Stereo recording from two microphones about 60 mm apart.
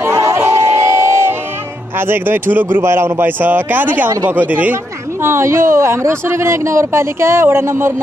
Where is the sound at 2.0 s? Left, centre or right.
Right.